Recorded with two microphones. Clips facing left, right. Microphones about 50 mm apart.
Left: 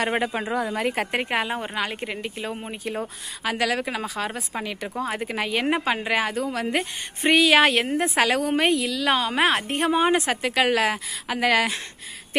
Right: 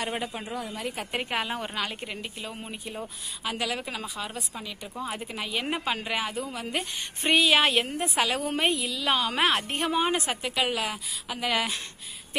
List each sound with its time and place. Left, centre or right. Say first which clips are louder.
0.1 s speech: left 8 dB; left
1.1 s a woman's voice: left 5 dB; left
1.5 s a woman's voice: left 4 dB; centre
1.8 s a woman's voice: left 5 dB; left
2.8 s speech: left 7 dB; left
5.7 s speech: left 6 dB; left
6.1 s a woman's voice: left 7 dB; left
9.6 s speech: left 5 dB; left
10.3 s speech: left 6 dB; left
10.7 s speech: left 8 dB; left